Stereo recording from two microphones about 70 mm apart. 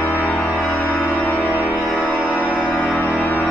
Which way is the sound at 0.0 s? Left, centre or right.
Left.